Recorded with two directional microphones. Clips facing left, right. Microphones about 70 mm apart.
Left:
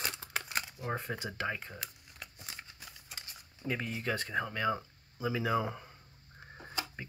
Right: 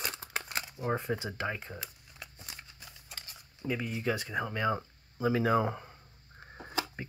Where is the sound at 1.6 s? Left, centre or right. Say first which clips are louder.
Right 2 dB; centre.